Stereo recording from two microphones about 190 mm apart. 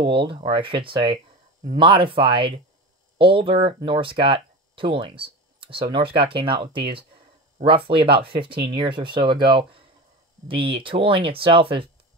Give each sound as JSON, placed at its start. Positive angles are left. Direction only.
{"t": 0.0, "sound": "speech", "side_deg": -25}